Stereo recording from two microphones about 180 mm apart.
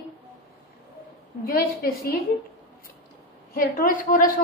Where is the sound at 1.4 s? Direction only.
55° left (ahead or behind).